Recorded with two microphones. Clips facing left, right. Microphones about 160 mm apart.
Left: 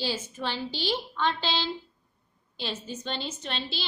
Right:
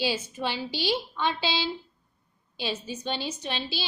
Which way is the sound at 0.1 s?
10° right (ahead or behind).